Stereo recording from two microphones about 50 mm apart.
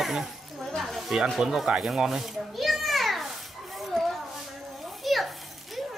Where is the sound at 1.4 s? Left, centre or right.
Centre.